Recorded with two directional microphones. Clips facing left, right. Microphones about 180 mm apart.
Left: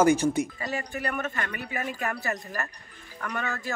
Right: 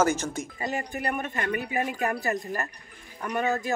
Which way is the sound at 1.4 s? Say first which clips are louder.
Right 5 dB; 20° right (ahead or behind).